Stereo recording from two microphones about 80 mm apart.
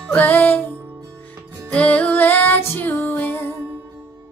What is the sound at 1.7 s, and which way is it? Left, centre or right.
Music, centre.